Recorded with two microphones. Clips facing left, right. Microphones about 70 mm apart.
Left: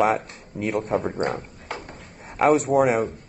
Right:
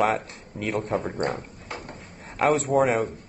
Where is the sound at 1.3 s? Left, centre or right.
Left.